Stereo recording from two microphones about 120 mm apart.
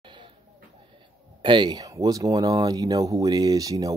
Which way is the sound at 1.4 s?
40° right (ahead or behind).